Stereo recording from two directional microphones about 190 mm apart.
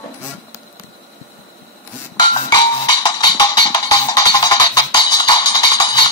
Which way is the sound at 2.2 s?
20° left (ahead or behind).